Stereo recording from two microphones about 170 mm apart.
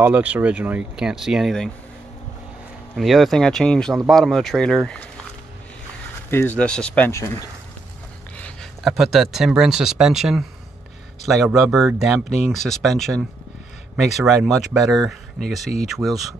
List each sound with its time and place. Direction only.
0.0 s speech: 10° right (ahead or behind)
3.0 s speech: centre (ahead or behind)
6.3 s speech: 10° left (ahead or behind)
7.1 s speech: 15° left (ahead or behind)
8.4 s a sound: 5° left (ahead or behind)
8.9 s speech: centre (ahead or behind)